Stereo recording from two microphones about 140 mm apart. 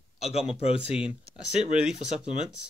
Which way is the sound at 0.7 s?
5° right (ahead or behind).